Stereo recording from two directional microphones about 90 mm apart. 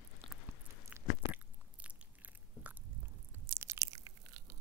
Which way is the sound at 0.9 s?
15° right (ahead or behind).